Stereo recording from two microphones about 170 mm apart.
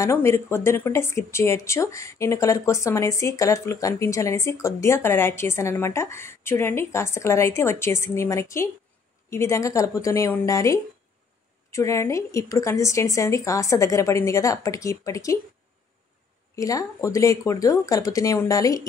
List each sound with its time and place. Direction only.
0.0 s speech: 15° left (ahead or behind)
16.5 s speech: 20° left (ahead or behind)